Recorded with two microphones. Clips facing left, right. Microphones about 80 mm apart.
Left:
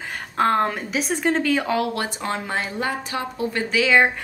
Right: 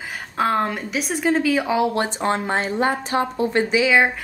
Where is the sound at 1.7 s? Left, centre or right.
Right.